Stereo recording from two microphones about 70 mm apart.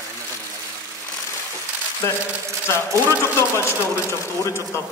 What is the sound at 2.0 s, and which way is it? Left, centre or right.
A man's voice, left.